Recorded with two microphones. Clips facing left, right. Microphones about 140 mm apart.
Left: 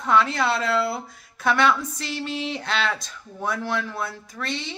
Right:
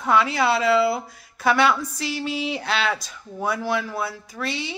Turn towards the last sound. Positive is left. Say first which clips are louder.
# right 2 dB
turn(degrees=-5)  # may be behind; listen again after turning